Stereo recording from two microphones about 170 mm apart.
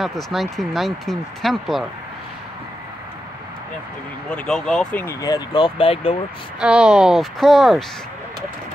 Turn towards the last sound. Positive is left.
turn(degrees=0)  # may be behind; listen again after turning